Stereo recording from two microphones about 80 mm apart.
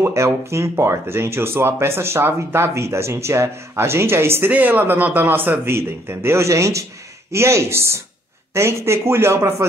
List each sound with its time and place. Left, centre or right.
0.0 s speech: right
4.5 s a man's voice: right